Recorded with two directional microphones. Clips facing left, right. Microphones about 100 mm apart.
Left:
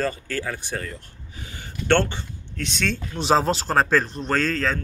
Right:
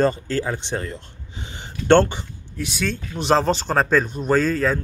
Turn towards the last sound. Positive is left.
turn(degrees=-5)  # may be behind; listen again after turning